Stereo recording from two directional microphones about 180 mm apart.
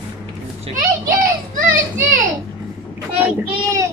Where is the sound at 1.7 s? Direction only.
45° right (ahead or behind).